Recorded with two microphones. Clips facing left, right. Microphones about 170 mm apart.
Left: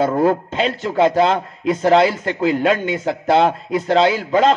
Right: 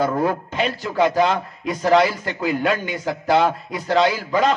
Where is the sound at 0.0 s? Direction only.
25° left (ahead or behind).